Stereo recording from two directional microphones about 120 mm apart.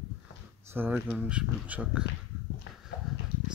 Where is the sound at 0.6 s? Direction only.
15° right (ahead or behind).